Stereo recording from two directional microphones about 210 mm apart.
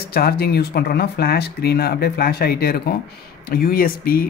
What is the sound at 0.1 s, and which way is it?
Speech, 45° left (ahead or behind).